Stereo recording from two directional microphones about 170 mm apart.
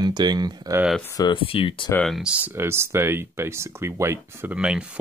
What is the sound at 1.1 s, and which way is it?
Speech, 25° left (ahead or behind).